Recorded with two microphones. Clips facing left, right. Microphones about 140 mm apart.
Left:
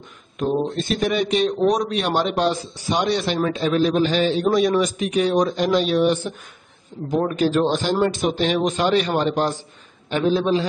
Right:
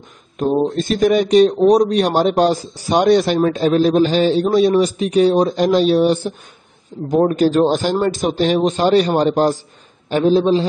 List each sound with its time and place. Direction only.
0.4 s speech: 40° right (ahead or behind)